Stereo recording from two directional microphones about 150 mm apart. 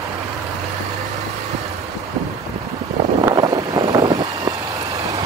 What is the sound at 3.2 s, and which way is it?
Vehicle, 25° right (ahead or behind).